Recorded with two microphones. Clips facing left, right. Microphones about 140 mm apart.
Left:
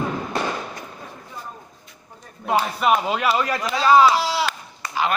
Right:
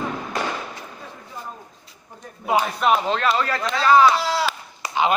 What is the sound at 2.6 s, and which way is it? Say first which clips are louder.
Speech: left 1 dB; 5° left (ahead or behind).